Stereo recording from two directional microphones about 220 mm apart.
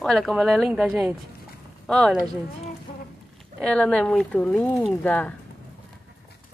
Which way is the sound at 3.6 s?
Centre (ahead or behind).